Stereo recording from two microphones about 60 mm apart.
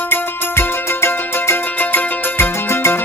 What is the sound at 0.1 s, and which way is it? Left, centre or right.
Music, left.